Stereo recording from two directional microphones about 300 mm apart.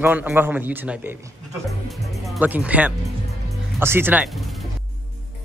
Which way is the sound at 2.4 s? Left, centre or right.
Centre.